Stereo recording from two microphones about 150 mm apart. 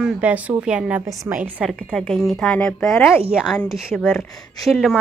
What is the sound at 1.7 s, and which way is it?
Speech, 5° left (ahead or behind).